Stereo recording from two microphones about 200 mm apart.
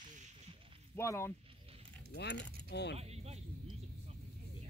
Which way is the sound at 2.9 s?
30° right (ahead or behind).